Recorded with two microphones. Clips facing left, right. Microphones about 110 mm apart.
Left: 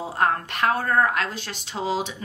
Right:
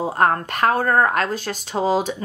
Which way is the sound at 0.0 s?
45° right (ahead or behind).